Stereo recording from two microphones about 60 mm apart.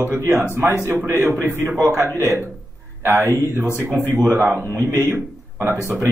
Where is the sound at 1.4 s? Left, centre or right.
Right.